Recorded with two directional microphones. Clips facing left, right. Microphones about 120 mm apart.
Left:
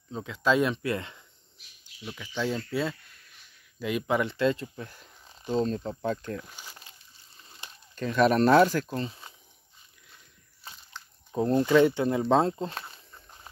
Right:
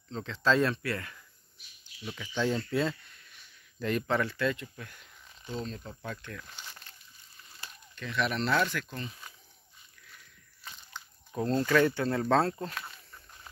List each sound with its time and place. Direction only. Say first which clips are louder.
0.1 s speech: left 2 dB; 10° left (ahead or behind)
2.0 s speech: even; 5° left (ahead or behind)
4.3 s speech: left 5 dB; 25° left (ahead or behind)
6.4 s snake: left 1 dB; 10° left (ahead or behind)
7.3 s a sound: left 1 dB; 25° left (ahead or behind)
7.9 s speech: left 9 dB; 40° left (ahead or behind)
10.0 s biting: right 2 dB; 25° left (ahead or behind)
11.3 s speech: left 5 dB; 20° left (ahead or behind)
13.1 s a sound: left 2 dB; 25° left (ahead or behind)